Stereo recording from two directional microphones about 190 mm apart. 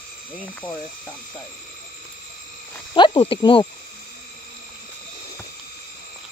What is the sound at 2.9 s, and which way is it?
Speech, 25° left (ahead or behind).